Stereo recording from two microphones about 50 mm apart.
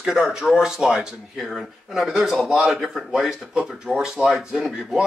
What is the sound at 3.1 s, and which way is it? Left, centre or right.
Speech, centre.